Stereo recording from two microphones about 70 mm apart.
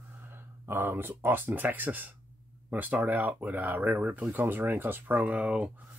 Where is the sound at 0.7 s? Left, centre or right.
Right.